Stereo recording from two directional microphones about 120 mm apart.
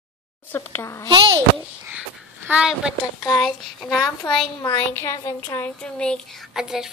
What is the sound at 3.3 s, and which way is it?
Speech, 5° right (ahead or behind).